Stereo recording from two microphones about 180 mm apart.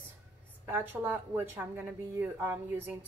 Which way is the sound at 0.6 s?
10° right (ahead or behind).